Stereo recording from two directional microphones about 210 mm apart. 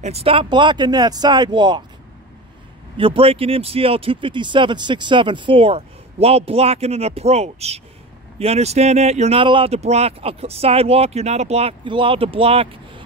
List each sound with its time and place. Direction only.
0.0 s speech: 30° right (ahead or behind)
3.0 s speech: 25° right (ahead or behind)